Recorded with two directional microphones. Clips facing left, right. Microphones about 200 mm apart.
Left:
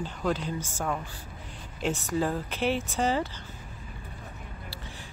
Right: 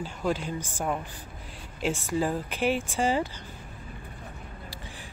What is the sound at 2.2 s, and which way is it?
Speech, 10° right (ahead or behind).